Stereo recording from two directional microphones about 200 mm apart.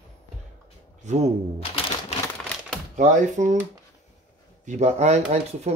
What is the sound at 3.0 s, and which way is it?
Speech, 35° right (ahead or behind).